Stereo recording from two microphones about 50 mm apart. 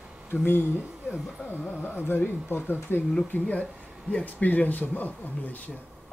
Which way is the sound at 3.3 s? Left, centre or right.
Left.